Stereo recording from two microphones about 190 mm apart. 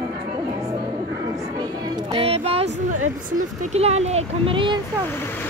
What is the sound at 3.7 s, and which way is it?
Speech, 35° right (ahead or behind).